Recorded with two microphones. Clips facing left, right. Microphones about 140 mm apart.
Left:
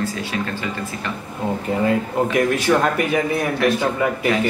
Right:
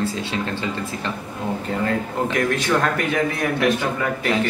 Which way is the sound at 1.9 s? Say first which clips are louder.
Left 4 dB; 10° left (ahead or behind).